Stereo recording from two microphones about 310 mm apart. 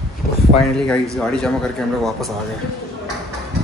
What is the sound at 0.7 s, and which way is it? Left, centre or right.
Speech, centre.